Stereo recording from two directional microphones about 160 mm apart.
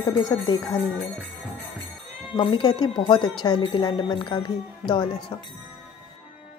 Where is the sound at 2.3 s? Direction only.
30° left (ahead or behind).